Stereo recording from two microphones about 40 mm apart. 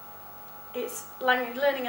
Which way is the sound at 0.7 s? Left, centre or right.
Centre.